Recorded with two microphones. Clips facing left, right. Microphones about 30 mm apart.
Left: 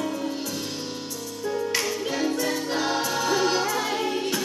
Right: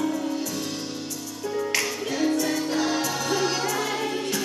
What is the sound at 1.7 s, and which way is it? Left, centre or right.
Music, left.